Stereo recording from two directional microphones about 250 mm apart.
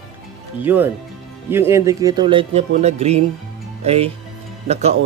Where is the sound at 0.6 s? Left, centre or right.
Centre.